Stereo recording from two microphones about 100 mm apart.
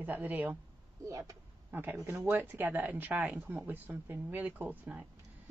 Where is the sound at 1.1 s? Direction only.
35° right (ahead or behind).